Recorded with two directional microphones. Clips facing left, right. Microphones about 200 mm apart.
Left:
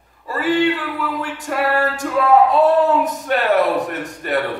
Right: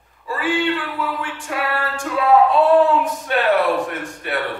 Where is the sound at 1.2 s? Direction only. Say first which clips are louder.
Left 4 dB; 40° left (ahead or behind).